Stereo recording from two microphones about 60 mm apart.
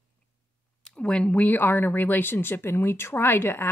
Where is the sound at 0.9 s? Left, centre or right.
Centre.